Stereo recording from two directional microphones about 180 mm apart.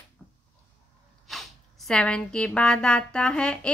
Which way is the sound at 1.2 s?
Centre (ahead or behind).